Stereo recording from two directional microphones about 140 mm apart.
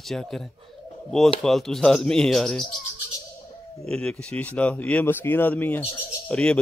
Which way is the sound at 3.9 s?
5° left (ahead or behind).